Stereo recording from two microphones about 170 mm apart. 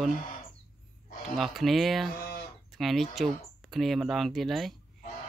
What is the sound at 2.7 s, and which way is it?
Speech, centre (ahead or behind).